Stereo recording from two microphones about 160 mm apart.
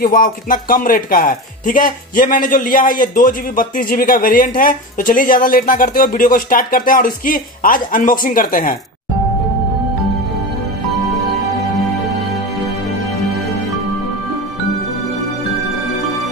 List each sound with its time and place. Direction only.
0.0 s speech: 60° left (ahead or behind)